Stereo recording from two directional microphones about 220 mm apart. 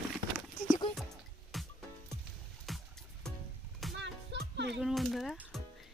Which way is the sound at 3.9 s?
50° right (ahead or behind).